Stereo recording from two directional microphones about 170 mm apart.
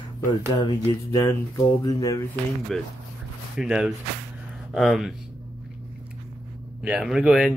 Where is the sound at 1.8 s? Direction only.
20° left (ahead or behind).